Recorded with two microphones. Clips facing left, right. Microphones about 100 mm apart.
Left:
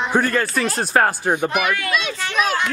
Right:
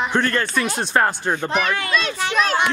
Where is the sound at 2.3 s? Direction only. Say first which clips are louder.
Even; 10° left (ahead or behind).